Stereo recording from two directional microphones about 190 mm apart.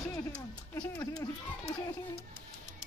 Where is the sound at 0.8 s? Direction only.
20° left (ahead or behind).